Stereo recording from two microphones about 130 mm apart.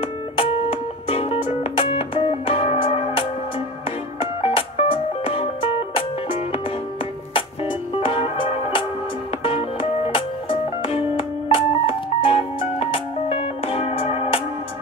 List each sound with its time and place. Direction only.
0.0 s music: 45° left (ahead or behind)
7.3 s music: 45° left (ahead or behind)